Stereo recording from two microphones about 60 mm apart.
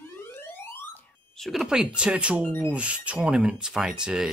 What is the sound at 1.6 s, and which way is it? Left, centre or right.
Speech, centre.